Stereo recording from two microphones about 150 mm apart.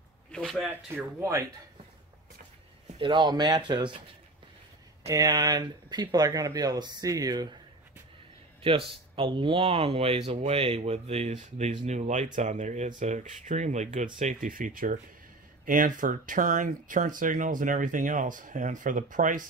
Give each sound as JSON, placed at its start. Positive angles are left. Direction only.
{"t": 0.3, "sound": "speech", "side_deg": 0}
{"t": 0.8, "sound": "speech", "side_deg": -15}
{"t": 3.0, "sound": "speech", "side_deg": -30}
{"t": 5.0, "sound": "speech", "side_deg": -25}
{"t": 8.6, "sound": "speech", "side_deg": -35}